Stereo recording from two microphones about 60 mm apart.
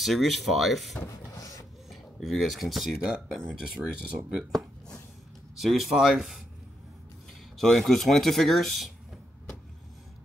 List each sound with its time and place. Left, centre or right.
0.0 s speech: centre
1.4 s rub: left
1.9 s speech: centre
4.5 s a sound: centre
5.6 s speech: centre
7.5 s speech: centre